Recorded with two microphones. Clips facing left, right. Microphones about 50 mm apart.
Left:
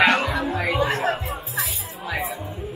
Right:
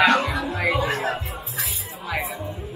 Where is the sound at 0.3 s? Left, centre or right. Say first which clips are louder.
Even; left.